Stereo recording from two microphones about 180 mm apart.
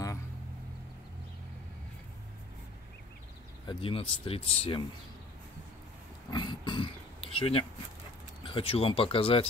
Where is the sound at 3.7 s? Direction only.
30° left (ahead or behind).